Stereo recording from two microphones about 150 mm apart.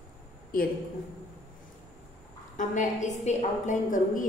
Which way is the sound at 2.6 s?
55° left (ahead or behind).